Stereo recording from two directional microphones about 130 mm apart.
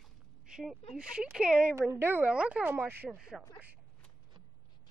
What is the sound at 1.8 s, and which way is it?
Speech, 20° right (ahead or behind).